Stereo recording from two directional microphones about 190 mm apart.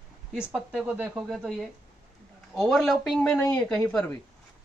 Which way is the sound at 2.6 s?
Centre (ahead or behind).